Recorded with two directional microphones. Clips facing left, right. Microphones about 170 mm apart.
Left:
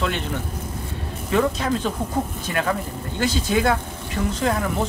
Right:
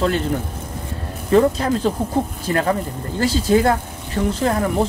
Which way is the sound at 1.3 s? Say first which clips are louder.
Right 6 dB; 35° right (ahead or behind).